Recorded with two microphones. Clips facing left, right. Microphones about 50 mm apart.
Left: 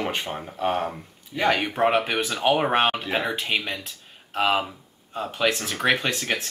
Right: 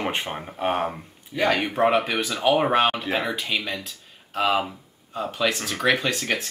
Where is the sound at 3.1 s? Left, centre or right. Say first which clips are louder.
Right 1 dB; right.